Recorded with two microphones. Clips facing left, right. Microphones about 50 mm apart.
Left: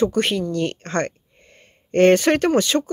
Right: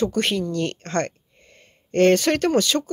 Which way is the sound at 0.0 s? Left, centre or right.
Centre.